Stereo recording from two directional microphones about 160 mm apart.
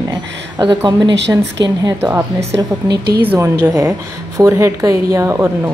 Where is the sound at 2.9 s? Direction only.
90° right.